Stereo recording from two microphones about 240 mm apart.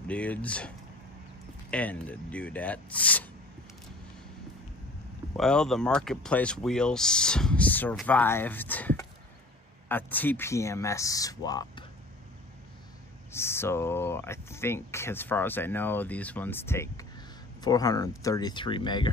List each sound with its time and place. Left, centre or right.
0.1 s speech: centre
5.3 s speech: centre
13.3 s speech: centre